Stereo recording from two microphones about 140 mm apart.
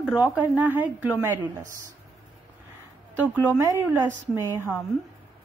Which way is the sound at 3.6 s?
25° right (ahead or behind).